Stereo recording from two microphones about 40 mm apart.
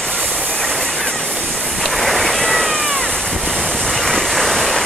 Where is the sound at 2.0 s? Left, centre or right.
Centre.